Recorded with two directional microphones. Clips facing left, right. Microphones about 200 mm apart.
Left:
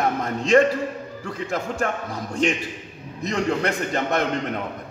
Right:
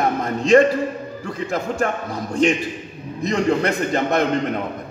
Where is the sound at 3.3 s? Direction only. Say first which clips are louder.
Right 4 dB; 15° right (ahead or behind).